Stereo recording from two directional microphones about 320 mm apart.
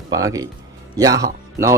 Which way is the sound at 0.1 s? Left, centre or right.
Centre.